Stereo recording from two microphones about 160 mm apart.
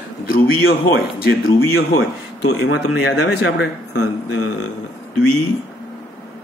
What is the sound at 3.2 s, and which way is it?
Speech, 90° left.